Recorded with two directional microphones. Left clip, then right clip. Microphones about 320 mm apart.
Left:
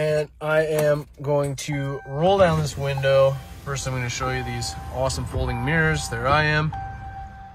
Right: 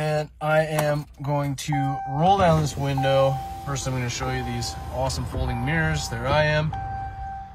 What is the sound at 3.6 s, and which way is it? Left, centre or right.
Speech, centre.